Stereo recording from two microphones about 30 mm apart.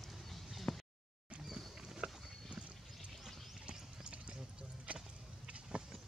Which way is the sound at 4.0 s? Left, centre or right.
Right.